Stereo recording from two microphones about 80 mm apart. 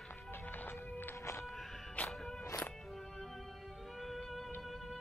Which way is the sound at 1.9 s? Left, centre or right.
Centre.